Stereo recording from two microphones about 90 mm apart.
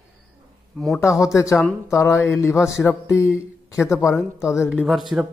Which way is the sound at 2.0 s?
5° right (ahead or behind).